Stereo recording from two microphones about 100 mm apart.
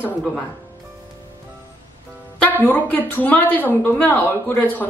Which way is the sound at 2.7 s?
15° left (ahead or behind).